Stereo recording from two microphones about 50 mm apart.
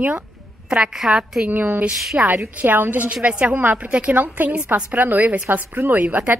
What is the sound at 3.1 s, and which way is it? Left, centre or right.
A woman's voice, right.